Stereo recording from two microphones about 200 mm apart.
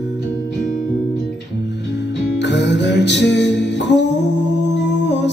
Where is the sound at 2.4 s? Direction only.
60° left (ahead or behind).